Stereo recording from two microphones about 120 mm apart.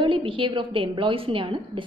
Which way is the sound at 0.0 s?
45° right (ahead or behind).